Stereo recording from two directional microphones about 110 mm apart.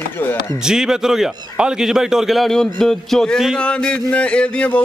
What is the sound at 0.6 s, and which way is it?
A man's voice, 5° right (ahead or behind).